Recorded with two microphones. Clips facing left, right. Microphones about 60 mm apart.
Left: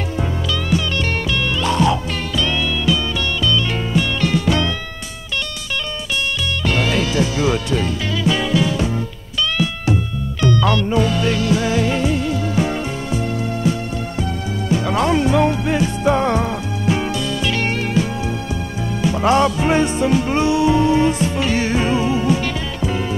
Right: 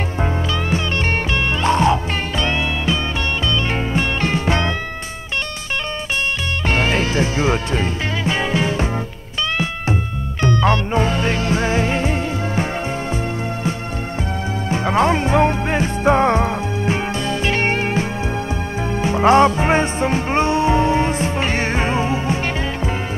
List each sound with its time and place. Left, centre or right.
0.2 s music: right
6.6 s music: right
10.4 s music: right
14.7 s music: right